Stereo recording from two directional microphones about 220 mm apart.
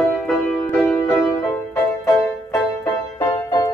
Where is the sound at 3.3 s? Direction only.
20° left (ahead or behind).